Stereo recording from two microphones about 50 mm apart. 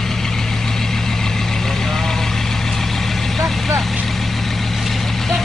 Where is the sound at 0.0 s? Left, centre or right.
Centre.